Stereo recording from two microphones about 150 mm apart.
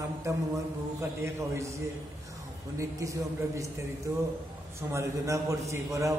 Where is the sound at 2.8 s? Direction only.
20° right (ahead or behind).